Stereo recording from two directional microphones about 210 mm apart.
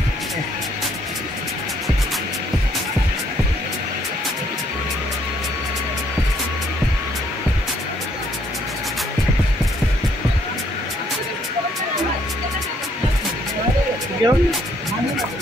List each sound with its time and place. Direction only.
14.2 s music: 20° right (ahead or behind)